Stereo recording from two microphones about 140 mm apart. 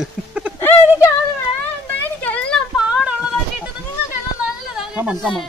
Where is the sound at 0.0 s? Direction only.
10° right (ahead or behind).